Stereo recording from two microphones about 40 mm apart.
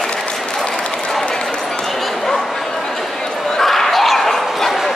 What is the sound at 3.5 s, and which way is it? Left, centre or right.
Bow-wow, centre.